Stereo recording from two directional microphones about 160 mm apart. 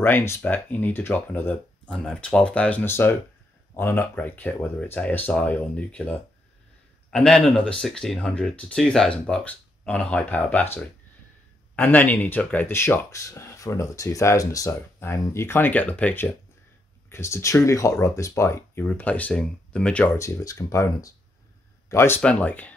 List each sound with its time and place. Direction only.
0.0 s speech: 15° left (ahead or behind)